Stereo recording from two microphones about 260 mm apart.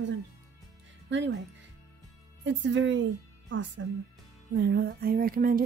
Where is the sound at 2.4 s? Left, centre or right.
Right.